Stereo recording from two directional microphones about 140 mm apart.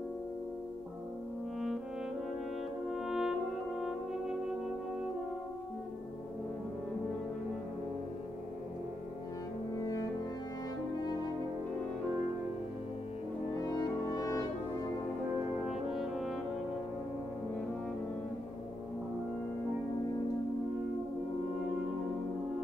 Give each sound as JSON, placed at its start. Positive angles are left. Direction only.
{"t": 2.9, "sound": "music", "side_deg": -5}
{"t": 9.8, "sound": "music", "side_deg": 25}
{"t": 13.7, "sound": "music", "side_deg": 25}
{"t": 15.7, "sound": "french horn", "side_deg": 0}